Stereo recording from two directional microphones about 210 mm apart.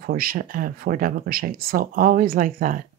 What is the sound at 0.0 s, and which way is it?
Speech, 45° right (ahead or behind).